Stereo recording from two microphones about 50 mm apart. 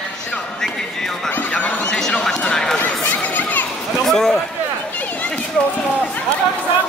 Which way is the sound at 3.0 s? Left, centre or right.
Left.